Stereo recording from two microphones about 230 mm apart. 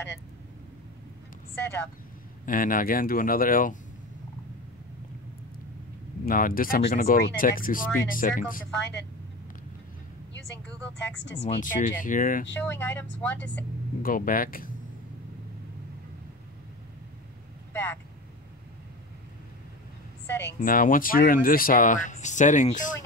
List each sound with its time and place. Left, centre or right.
1.5 s speech: centre
2.4 s speech: left
6.2 s speech: left
11.1 s speech: left
11.4 s speech: left
12.5 s speech: centre
14.0 s speech: left
20.5 s speech: left